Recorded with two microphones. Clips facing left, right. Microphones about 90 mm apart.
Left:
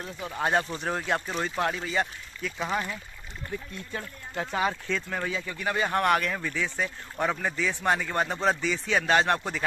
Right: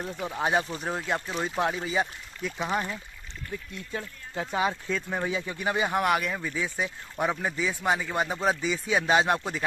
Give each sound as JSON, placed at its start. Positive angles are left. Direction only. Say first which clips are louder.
{"t": 0.0, "sound": "speech", "louder": "right 1 dB", "side_deg": -10}
{"t": 1.6, "sound": "speech", "louder": "right 1 dB", "side_deg": -10}
{"t": 4.5, "sound": "speech", "louder": "right 1 dB", "side_deg": -10}